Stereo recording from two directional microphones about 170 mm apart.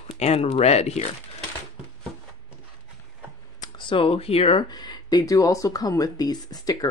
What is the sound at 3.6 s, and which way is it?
Speech, 30° left (ahead or behind).